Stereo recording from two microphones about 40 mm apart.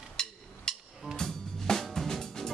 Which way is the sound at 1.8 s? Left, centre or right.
Centre.